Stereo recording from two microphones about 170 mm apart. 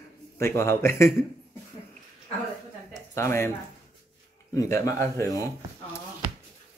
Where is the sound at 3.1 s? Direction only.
15° left (ahead or behind).